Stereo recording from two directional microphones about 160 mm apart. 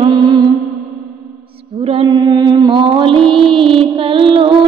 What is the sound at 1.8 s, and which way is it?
Female singing, 30° right (ahead or behind).